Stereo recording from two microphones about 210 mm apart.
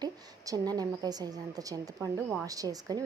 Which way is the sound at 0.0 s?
15° right (ahead or behind).